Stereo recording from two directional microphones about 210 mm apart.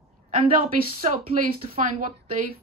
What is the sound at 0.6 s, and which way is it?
Speech, 40° right (ahead or behind).